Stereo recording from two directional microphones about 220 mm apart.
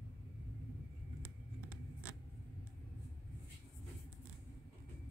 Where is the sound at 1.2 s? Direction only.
10° left (ahead or behind).